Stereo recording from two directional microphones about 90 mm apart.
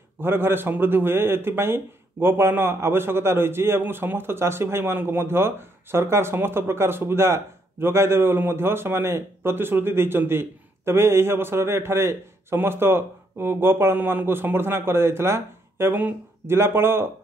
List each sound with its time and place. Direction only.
0.2 s speech: 25° right (ahead or behind)